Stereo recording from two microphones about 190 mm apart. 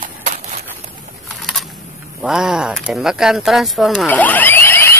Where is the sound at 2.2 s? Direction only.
5° right (ahead or behind).